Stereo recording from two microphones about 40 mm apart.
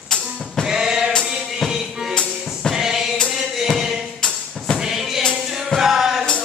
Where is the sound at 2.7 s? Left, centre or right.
Centre.